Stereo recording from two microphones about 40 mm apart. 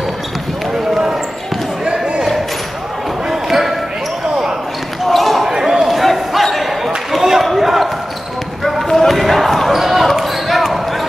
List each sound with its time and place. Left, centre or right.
1.9 s a sound: right
3.3 s basketball bounce: centre
5.0 s basketball bounce: centre
5.4 s basketball bounce: centre
5.9 s a sound: centre
7.4 s basketball bounce: centre